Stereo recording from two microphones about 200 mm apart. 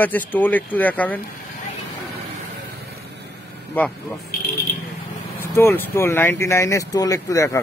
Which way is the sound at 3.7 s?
10° left (ahead or behind).